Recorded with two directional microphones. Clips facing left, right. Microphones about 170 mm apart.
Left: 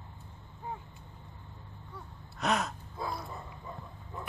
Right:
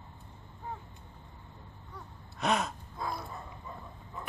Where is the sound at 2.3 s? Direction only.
Centre (ahead or behind).